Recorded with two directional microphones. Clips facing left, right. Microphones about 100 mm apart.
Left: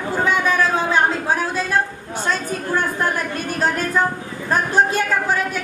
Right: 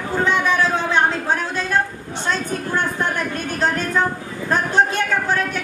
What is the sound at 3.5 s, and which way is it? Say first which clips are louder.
Speech: even; 5° left (ahead or behind).